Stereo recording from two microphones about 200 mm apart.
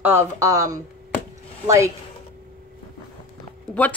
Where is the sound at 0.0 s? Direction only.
10° right (ahead or behind).